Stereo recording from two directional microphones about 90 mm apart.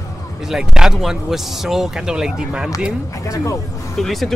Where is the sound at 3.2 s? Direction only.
40° left (ahead or behind).